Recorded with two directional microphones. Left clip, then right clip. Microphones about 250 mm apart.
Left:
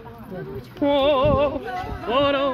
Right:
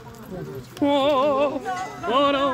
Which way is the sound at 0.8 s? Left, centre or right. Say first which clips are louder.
Left 1 dB; centre.